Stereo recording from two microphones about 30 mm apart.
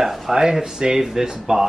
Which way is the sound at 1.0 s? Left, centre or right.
Centre.